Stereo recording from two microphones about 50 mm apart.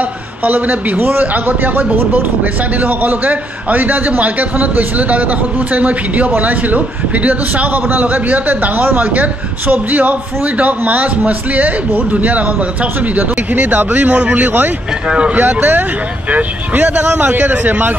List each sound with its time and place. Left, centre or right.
0.4 s a man's voice: right
15.0 s speech: right
15.3 s a man's voice: right